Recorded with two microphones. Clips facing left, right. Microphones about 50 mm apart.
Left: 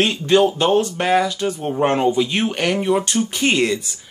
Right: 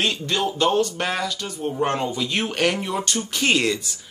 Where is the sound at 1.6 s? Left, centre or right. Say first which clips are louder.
Left 4 dB; left.